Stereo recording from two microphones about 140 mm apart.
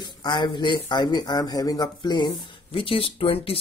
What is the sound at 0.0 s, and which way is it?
Speech, 30° left (ahead or behind).